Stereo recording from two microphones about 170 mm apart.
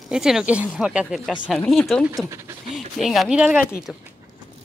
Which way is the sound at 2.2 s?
20° right (ahead or behind).